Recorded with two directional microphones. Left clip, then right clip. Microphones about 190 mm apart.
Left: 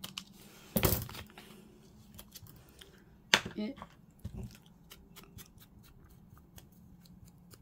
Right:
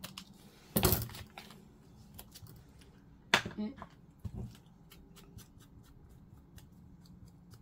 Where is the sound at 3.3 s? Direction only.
55° left (ahead or behind).